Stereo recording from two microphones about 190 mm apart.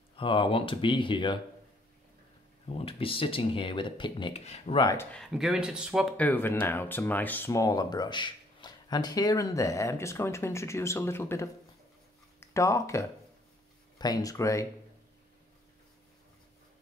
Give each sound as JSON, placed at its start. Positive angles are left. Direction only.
{"t": 0.1, "sound": "speech", "side_deg": 25}
{"t": 2.7, "sound": "speech", "side_deg": 30}
{"t": 5.1, "sound": "speech", "side_deg": 0}